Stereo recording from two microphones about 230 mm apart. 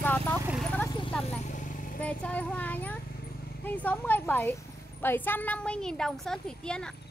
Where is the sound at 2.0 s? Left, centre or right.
Centre.